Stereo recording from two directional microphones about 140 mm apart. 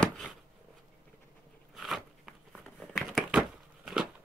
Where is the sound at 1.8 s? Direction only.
Centre (ahead or behind).